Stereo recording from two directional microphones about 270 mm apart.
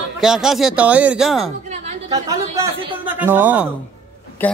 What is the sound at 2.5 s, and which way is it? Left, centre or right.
A woman's voice, centre.